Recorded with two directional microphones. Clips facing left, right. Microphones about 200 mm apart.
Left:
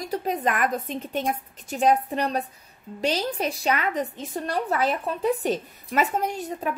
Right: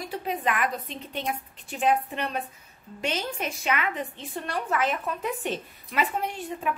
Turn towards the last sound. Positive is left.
turn(degrees=40)  # may be behind; listen again after turning